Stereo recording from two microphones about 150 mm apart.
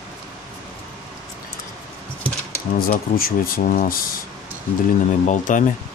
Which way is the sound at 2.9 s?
70° left (ahead or behind).